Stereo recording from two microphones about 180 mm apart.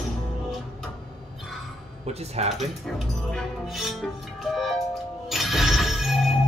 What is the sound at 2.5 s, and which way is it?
Speech, centre (ahead or behind).